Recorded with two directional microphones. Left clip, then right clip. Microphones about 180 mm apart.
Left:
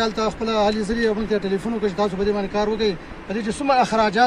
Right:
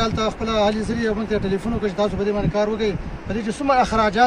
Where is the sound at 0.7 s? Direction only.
30° right (ahead or behind).